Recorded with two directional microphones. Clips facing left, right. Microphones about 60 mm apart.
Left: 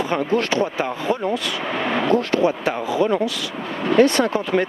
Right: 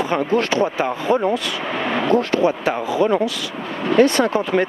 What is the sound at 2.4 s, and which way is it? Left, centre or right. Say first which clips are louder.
Speech: right 1 dB; right.